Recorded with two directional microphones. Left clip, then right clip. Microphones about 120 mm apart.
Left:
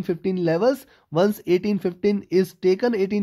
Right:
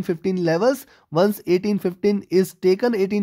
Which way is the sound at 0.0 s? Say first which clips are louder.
Right 1 dB; 25° right (ahead or behind).